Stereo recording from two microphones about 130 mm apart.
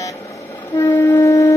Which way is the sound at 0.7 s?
20° left (ahead or behind).